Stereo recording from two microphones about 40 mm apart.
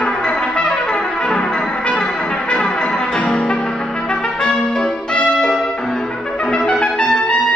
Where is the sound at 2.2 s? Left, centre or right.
Left.